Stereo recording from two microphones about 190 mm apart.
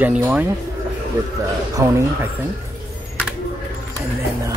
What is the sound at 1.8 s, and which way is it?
Speech, 15° right (ahead or behind).